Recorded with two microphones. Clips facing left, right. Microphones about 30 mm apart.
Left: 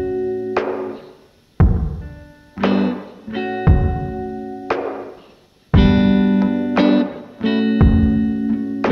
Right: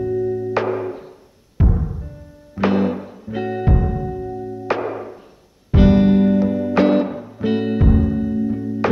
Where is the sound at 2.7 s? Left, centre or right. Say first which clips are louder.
Left 1 dB; left.